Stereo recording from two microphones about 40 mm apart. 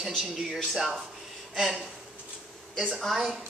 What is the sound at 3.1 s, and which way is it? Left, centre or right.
Speech, centre.